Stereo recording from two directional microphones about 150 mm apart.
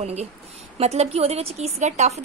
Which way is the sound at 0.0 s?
45° right (ahead or behind).